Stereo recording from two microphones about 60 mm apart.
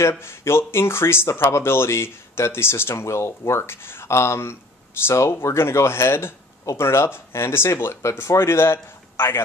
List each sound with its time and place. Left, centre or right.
0.2 s speech: left
6.6 s speech: left